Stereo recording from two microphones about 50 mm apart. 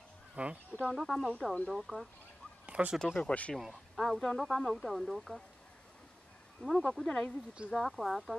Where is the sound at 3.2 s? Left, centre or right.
Left.